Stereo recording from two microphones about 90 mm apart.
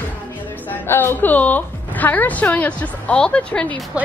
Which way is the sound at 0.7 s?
25° left (ahead or behind).